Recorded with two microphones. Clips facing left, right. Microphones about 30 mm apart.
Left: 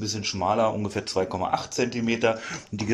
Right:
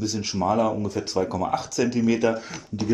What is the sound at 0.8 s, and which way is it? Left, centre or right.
Speech, left.